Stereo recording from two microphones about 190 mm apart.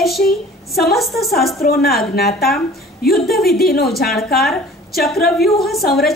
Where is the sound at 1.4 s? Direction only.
55° left (ahead or behind).